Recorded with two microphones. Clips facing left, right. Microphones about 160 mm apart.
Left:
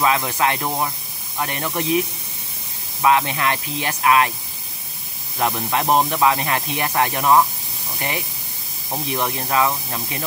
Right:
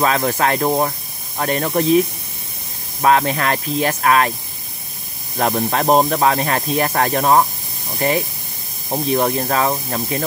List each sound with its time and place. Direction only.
0.0 s speech: 45° right (ahead or behind)
3.0 s speech: 45° right (ahead or behind)
5.4 s speech: 40° right (ahead or behind)
9.1 s speech: 40° right (ahead or behind)